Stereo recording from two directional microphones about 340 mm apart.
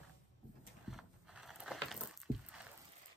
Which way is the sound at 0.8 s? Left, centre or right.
Centre.